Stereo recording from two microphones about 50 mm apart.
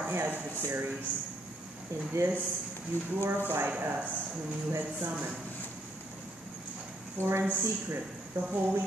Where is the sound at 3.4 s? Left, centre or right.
Right.